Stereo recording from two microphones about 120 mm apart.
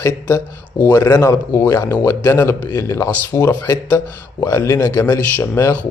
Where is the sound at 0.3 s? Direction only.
25° left (ahead or behind).